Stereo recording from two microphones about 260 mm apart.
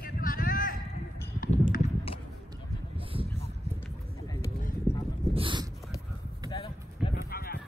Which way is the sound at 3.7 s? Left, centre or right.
Centre.